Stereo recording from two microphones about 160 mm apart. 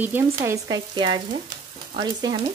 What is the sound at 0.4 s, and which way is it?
Frying, 25° right (ahead or behind).